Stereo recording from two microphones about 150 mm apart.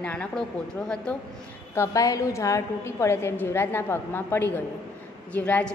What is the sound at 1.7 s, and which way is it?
A woman's voice, 20° left (ahead or behind).